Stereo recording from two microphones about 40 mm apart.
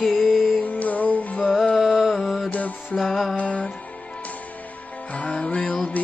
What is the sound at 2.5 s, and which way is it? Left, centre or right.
Music, left.